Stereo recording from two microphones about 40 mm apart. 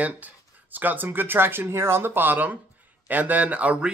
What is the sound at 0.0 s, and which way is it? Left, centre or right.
A man's voice, right.